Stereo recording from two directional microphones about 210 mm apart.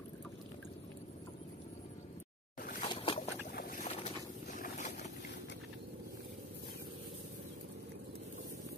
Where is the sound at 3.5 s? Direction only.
45° left (ahead or behind).